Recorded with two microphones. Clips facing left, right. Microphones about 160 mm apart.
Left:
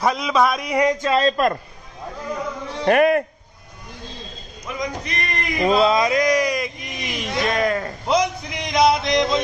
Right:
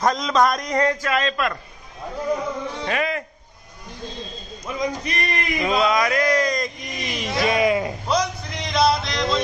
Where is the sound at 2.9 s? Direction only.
55° left (ahead or behind).